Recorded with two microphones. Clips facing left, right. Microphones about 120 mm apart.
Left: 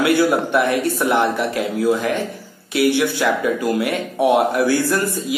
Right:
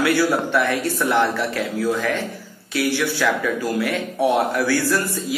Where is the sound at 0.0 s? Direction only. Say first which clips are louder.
Left 3 dB; 20° left (ahead or behind).